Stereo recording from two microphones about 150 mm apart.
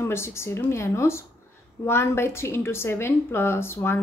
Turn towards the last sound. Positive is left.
turn(degrees=15)  # may be behind; listen again after turning